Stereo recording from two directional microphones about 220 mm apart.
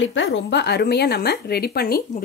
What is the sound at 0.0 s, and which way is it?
Speech, 60° left (ahead or behind).